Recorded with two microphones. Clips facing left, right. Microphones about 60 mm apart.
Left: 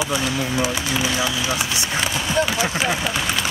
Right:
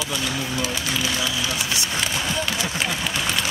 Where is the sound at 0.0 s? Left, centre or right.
Left.